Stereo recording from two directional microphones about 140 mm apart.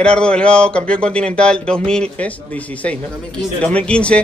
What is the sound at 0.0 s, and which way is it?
Speech, 5° left (ahead or behind).